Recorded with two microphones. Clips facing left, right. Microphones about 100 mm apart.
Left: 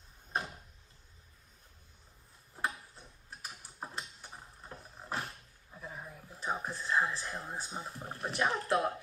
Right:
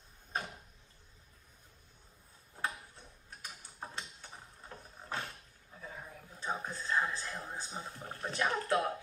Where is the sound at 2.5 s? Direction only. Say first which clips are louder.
Left 2 dB; 15° left (ahead or behind).